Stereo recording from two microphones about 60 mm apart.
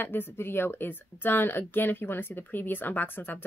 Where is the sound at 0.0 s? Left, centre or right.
Left.